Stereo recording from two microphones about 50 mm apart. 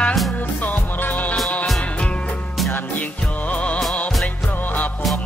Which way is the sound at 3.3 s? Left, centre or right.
Left.